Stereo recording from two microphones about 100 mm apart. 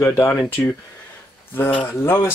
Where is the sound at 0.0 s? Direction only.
25° left (ahead or behind).